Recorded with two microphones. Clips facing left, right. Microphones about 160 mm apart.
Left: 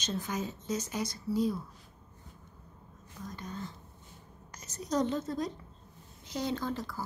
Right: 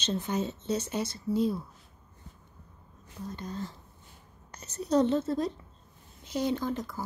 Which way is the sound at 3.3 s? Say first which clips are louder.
Right 3 dB; 35° right (ahead or behind).